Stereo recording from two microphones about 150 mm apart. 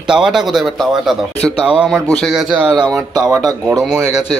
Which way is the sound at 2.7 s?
25° right (ahead or behind).